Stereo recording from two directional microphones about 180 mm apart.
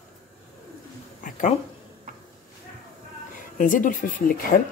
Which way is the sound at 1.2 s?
45° left (ahead or behind).